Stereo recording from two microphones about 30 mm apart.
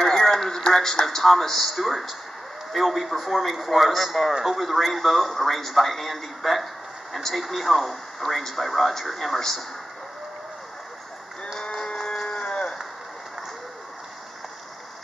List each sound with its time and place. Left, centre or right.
0.0 s radio: centre
1.0 s a man's voice: centre
4.3 s a man's voice: centre
4.6 s a man's voice: centre
11.6 s music: left
12.2 s a sound: left